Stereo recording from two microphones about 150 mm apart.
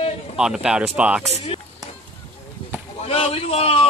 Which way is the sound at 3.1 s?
40° left (ahead or behind).